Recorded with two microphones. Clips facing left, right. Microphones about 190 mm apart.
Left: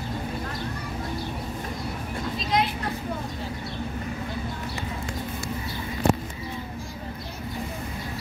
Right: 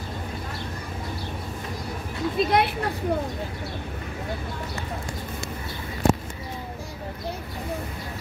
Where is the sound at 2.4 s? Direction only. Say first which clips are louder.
Right 4 dB; 60° right (ahead or behind).